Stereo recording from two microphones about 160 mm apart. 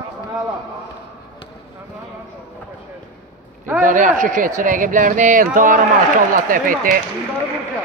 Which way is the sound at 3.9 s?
55° right (ahead or behind).